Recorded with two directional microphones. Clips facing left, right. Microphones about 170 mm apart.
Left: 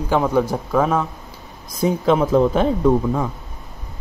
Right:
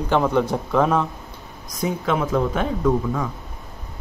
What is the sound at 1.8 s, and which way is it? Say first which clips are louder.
Speech: left 6 dB; 30° left (ahead or behind).